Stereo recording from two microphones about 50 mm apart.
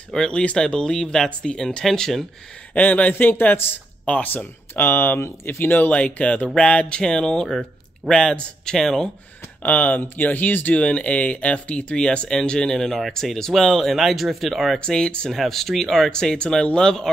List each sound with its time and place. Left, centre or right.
0.1 s speech: centre
2.7 s speech: left
5.9 s speech: left; by 9.1 s centre
9.6 s speech: left
10.8 s speech: left; by 14.8 s centre
14.8 s speech: centre
15.3 s speech: centre